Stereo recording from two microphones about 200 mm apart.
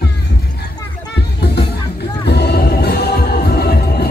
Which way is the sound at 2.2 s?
55° left (ahead or behind).